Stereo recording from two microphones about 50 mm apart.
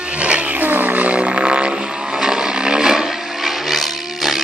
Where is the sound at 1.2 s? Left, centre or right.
Centre.